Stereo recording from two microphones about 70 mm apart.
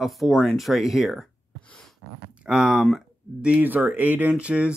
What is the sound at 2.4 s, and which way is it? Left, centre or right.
Speech, centre.